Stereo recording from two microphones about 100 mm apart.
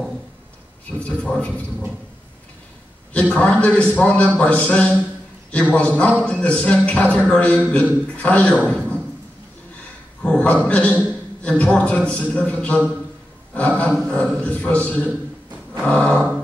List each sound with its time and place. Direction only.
0.9 s a man's voice: 10° left (ahead or behind)
3.3 s a man's voice: 10° left (ahead or behind)
8.6 s a sound: 10° left (ahead or behind)
10.2 s a man's voice: 10° left (ahead or behind)
15.8 s a man's voice: 10° left (ahead or behind)